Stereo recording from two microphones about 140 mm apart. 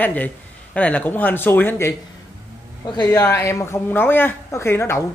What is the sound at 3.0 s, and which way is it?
A man's voice, 20° left (ahead or behind).